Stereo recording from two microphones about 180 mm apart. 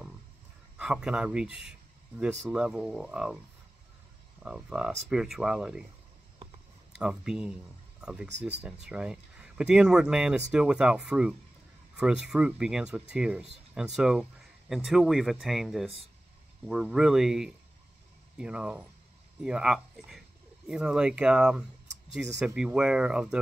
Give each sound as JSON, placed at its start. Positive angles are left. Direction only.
{"t": 0.7, "sound": "speech", "side_deg": -5}
{"t": 4.4, "sound": "speech", "side_deg": -5}
{"t": 7.0, "sound": "speech", "side_deg": -5}